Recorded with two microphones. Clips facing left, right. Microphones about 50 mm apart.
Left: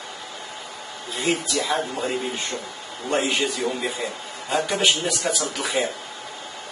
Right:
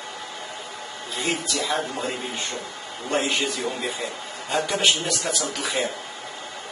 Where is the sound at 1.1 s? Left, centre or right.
Centre.